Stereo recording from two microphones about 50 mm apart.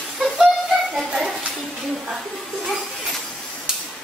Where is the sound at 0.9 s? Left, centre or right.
Centre.